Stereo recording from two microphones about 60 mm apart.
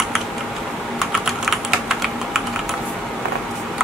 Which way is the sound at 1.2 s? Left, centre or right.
Centre.